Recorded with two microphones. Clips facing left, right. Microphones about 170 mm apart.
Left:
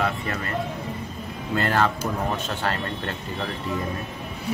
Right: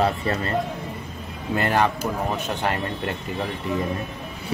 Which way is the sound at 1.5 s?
15° right (ahead or behind).